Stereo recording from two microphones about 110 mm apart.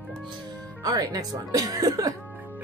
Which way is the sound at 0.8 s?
35° right (ahead or behind).